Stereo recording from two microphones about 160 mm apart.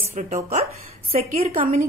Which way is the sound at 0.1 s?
45° right (ahead or behind).